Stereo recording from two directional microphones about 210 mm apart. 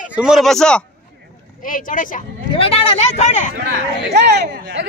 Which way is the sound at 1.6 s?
40° left (ahead or behind).